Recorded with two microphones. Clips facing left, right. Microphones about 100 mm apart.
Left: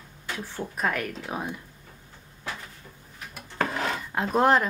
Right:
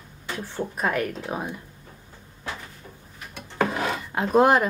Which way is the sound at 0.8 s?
5° right (ahead or behind).